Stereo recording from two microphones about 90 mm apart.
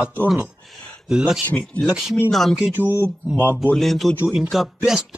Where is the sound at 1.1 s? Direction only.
10° right (ahead or behind).